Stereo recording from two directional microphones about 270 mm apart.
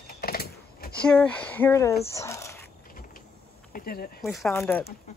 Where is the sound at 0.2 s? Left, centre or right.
Left.